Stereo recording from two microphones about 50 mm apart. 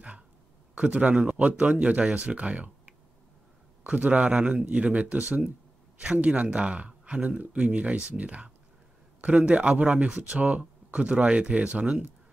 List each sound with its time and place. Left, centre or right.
0.7 s speech: right
10.0 s speech: centre